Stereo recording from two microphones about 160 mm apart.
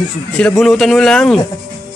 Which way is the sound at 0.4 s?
5° left (ahead or behind).